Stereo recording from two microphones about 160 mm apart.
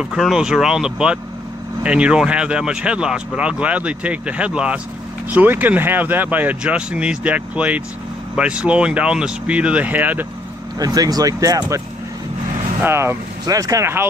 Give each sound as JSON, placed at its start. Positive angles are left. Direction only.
{"t": 0.0, "sound": "speech", "side_deg": -5}
{"t": 10.8, "sound": "speech", "side_deg": -25}
{"t": 12.8, "sound": "speech", "side_deg": -15}